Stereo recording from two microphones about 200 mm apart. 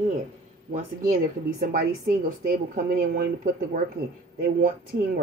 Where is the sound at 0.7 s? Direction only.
45° right (ahead or behind).